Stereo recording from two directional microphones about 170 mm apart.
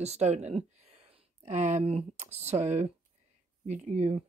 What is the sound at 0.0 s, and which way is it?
Speech, 40° right (ahead or behind).